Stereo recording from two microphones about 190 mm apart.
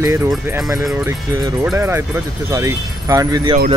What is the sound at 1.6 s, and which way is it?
Speech, 15° right (ahead or behind).